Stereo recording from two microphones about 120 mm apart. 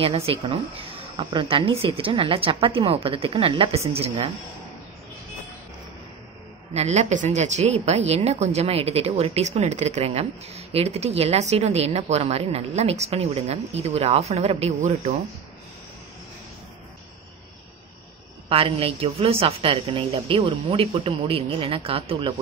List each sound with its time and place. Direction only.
0.0 s speech: 50° right (ahead or behind)
6.7 s speech: 65° right (ahead or behind)
18.5 s speech: 50° right (ahead or behind)